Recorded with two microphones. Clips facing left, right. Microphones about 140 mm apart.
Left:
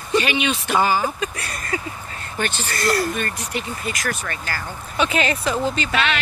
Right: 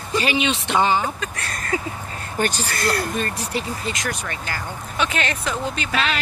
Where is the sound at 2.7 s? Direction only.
Centre (ahead or behind).